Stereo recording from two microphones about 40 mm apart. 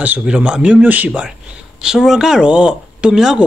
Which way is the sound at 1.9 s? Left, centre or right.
Centre.